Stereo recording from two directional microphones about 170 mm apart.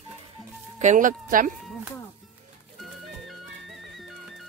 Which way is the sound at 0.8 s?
50° right (ahead or behind).